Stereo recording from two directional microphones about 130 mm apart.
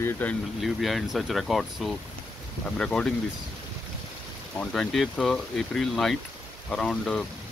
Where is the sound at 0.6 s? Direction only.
Centre (ahead or behind).